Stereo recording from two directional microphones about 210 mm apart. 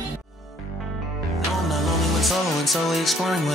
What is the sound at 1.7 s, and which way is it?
Music, centre (ahead or behind).